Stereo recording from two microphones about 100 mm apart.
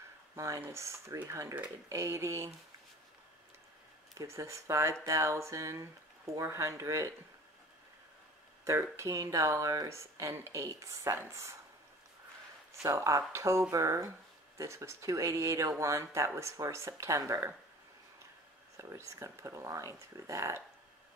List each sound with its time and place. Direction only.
0.6 s speech: 30° right (ahead or behind)
4.2 s speech: 30° right (ahead or behind)
8.9 s speech: 30° right (ahead or behind)
12.8 s speech: 30° right (ahead or behind)
18.8 s speech: 30° right (ahead or behind)